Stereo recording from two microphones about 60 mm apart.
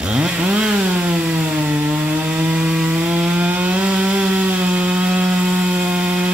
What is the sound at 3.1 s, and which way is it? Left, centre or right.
Chainsaw, right.